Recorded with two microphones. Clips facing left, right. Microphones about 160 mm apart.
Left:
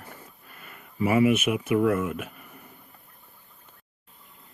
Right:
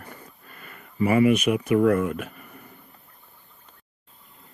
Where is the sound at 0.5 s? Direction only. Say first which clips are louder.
Right 4 dB; 5° left (ahead or behind).